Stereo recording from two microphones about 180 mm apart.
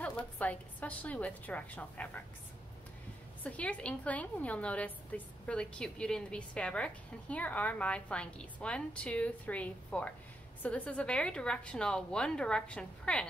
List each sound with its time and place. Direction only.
0.4 s a woman's voice: 10° left (ahead or behind)
3.4 s a woman's voice: 5° left (ahead or behind)